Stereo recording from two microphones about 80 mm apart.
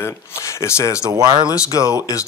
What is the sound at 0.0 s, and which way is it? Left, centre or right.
Speech, left.